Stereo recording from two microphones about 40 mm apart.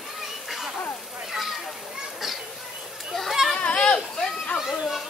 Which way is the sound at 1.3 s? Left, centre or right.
Centre.